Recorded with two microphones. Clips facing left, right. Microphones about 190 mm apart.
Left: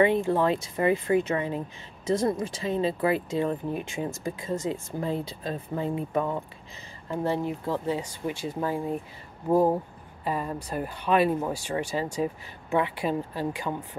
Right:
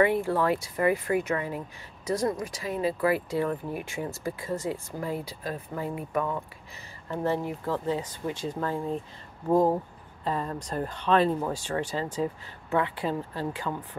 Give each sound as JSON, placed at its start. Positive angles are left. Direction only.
{"t": 0.0, "sound": "speech", "side_deg": 20}
{"t": 7.1, "sound": "speech", "side_deg": 15}
{"t": 10.2, "sound": "speech", "side_deg": 10}